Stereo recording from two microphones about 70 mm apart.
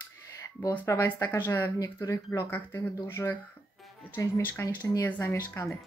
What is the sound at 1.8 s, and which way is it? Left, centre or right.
A woman's voice, left.